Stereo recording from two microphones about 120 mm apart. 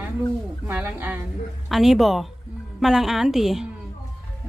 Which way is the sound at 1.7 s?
Centre (ahead or behind).